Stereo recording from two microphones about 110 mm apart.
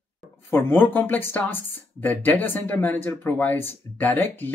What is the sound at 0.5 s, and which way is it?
Speech, 20° left (ahead or behind).